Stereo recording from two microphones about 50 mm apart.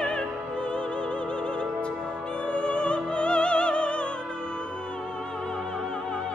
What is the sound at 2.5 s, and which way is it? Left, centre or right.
Music, left.